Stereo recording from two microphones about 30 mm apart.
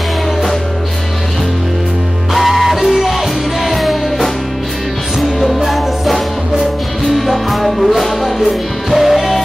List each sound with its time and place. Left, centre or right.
2.3 s music: centre
5.4 s music: centre